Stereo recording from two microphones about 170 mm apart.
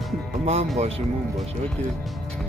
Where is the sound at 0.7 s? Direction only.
35° right (ahead or behind).